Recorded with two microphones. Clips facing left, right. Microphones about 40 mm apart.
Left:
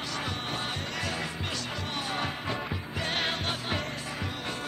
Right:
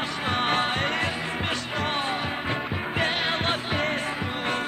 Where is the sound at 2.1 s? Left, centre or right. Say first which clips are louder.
Right 4 dB; right.